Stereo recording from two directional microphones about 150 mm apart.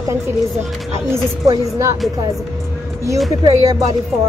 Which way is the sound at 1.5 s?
20° right (ahead or behind).